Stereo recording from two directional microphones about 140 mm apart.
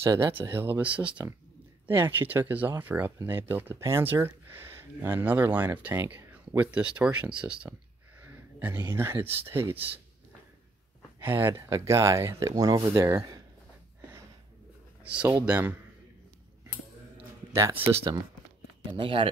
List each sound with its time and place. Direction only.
0.0 s speech: 15° right (ahead or behind)
11.1 s speech: 15° right (ahead or behind)
15.0 s speech: 10° right (ahead or behind)
17.6 s speech: 20° right (ahead or behind)
18.9 s speech: 40° right (ahead or behind)